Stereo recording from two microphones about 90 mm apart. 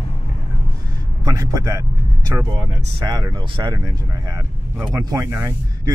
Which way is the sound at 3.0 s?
45° right (ahead or behind).